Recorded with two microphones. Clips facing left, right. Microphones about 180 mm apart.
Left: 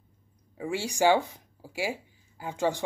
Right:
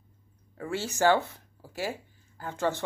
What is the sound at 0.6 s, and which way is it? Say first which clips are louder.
Speech: left 1 dB; 15° left (ahead or behind).